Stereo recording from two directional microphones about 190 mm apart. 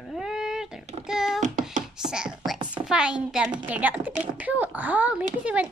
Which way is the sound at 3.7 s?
10° right (ahead or behind).